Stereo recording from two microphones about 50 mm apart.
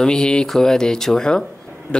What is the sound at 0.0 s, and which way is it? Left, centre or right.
Speech, centre.